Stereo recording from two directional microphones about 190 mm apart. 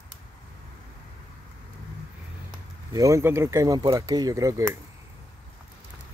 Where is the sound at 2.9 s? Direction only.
15° right (ahead or behind).